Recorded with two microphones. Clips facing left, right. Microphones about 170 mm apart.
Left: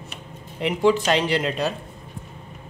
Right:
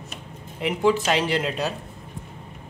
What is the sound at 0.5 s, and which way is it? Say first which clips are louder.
Speech: left 2 dB; 5° right (ahead or behind).